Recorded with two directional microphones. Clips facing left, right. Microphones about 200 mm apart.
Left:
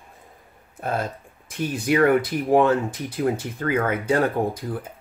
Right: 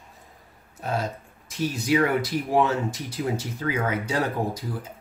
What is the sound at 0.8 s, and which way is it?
Speech, 55° left (ahead or behind).